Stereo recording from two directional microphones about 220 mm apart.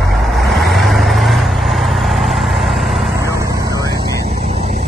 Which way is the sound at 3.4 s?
15° right (ahead or behind).